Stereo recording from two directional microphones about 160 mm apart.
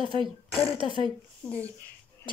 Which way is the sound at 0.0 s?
30° right (ahead or behind).